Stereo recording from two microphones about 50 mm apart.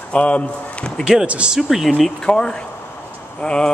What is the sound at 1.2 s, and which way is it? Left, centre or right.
Speech, right.